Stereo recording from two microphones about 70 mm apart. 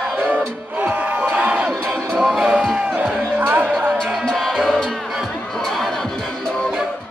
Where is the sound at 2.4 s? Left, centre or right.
Centre.